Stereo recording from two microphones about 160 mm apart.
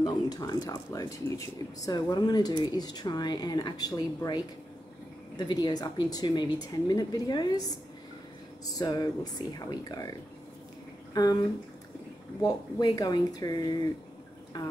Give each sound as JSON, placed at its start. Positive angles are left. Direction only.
{"t": 0.0, "sound": "speech", "side_deg": 25}
{"t": 8.7, "sound": "speech", "side_deg": 25}
{"t": 11.1, "sound": "speech", "side_deg": 25}
{"t": 12.4, "sound": "speech", "side_deg": 25}